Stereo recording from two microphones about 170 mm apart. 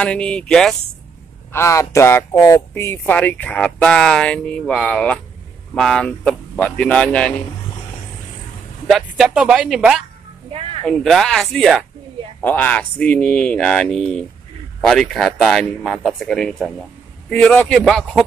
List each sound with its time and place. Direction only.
0.0 s speech: 5° left (ahead or behind)
1.5 s speech: 15° left (ahead or behind)
8.8 s speech: centre (ahead or behind)
10.5 s a sound: 35° right (ahead or behind)
10.9 s speech: centre (ahead or behind)